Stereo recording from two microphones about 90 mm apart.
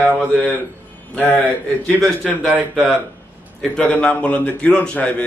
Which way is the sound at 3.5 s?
10° left (ahead or behind).